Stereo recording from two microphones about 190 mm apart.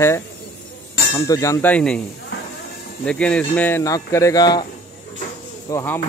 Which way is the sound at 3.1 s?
5° left (ahead or behind).